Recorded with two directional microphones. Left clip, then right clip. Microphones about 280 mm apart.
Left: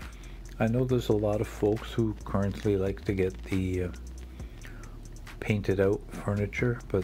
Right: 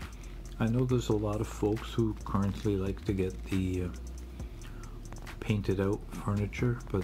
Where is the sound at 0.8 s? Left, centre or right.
Centre.